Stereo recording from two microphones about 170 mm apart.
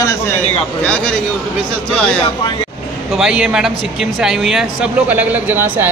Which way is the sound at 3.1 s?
5° right (ahead or behind).